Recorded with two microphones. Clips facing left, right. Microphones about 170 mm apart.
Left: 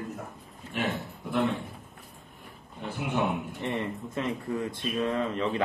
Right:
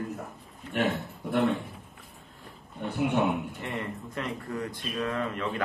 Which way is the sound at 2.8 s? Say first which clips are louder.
Right 3 dB; centre (ahead or behind).